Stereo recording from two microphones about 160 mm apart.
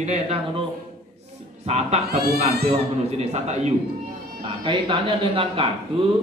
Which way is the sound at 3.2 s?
45° right (ahead or behind).